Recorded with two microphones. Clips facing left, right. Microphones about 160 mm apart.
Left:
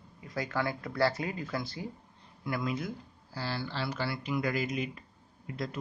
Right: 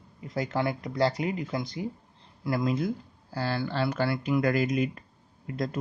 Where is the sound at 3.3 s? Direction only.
50° right (ahead or behind).